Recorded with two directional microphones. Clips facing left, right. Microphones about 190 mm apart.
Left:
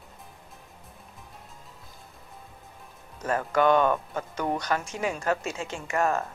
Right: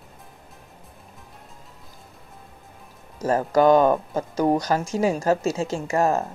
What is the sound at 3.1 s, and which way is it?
Speech, 35° right (ahead or behind).